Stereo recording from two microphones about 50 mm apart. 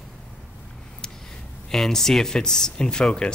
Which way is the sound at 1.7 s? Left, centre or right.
Centre.